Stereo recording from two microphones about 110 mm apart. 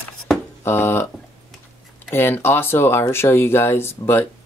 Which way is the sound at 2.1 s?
20° left (ahead or behind).